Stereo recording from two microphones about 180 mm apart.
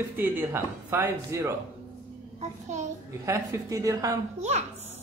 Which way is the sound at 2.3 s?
40° right (ahead or behind).